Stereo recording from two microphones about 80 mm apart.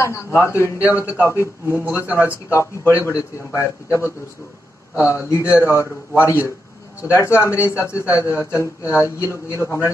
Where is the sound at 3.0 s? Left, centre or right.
Left.